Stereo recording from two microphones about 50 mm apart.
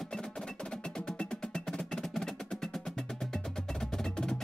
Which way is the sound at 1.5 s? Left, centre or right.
Centre.